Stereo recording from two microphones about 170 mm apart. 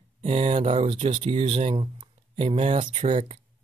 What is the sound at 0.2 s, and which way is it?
Speech, 35° right (ahead or behind).